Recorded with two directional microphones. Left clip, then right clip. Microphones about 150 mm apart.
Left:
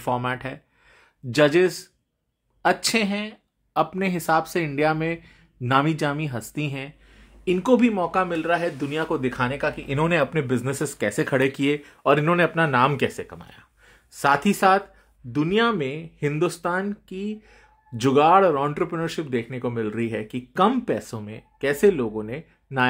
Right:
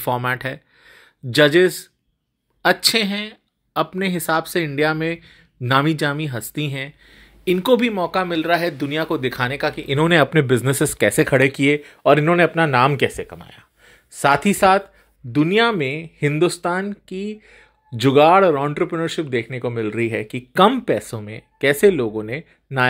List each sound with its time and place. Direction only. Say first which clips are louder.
0.0 s speech: right 4 dB; 15° right (ahead or behind)
7.4 s speech: right 3 dB; 15° right (ahead or behind)
10.0 s speech: right 7 dB; 35° right (ahead or behind); by 14.9 s 20° right (ahead or behind)
15.3 s speech: right 5 dB; 30° right (ahead or behind)